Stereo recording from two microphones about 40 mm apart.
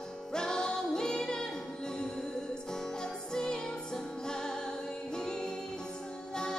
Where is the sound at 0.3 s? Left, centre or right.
Centre.